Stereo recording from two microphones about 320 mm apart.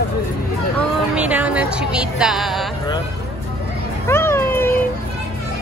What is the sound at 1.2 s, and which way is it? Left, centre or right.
A woman's voice, centre.